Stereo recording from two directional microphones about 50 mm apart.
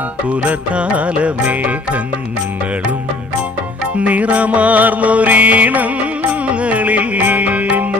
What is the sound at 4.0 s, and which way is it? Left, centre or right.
Music, right.